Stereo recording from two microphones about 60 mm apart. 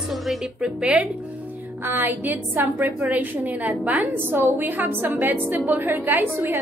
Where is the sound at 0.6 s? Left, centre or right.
Centre.